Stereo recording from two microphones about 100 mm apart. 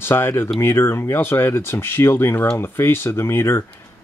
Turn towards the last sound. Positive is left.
turn(degrees=25)  # may be behind; listen again after turning